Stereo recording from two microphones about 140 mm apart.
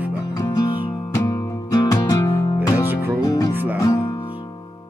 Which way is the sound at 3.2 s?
25° left (ahead or behind).